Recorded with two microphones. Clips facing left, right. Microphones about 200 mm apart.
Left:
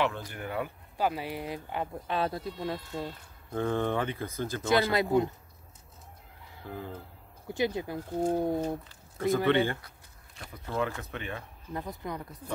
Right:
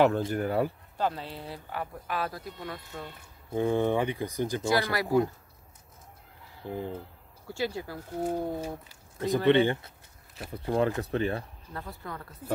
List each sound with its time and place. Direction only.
0.3 s speech: 40° right (ahead or behind)
0.9 s speech: 10° left (ahead or behind)
3.5 s speech: 15° right (ahead or behind)
4.9 s speech: 20° left (ahead or behind)
6.6 s speech: 20° right (ahead or behind)
7.4 s speech: 20° left (ahead or behind)
8.8 s a sound: 15° right (ahead or behind)
9.5 s speech: 20° right (ahead or behind)
10.5 s speech: 30° right (ahead or behind)
11.7 s speech: 15° left (ahead or behind)